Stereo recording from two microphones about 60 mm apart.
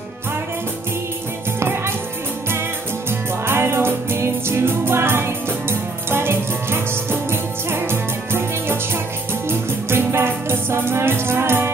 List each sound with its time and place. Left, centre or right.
3.1 s music: right